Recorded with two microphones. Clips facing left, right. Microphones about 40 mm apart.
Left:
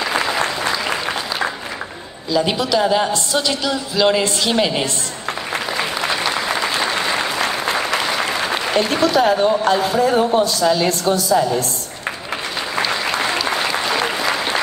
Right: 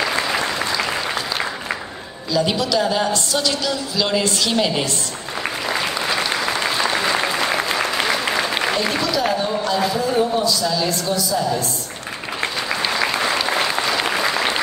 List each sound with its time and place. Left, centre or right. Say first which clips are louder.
2.3 s a woman's voice: left 2 dB; centre
8.7 s speech: left 5 dB; left